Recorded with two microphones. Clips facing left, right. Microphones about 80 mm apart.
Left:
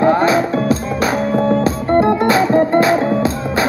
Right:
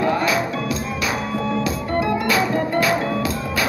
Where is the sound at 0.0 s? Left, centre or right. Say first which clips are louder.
Left 7 dB; left.